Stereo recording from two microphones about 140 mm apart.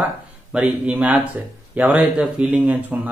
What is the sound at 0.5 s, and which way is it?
A man's voice, 5° right (ahead or behind).